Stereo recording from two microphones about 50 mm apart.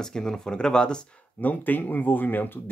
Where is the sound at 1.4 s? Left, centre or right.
Left.